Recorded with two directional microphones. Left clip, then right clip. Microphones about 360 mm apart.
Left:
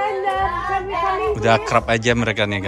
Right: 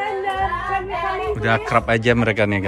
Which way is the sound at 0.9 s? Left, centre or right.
Centre.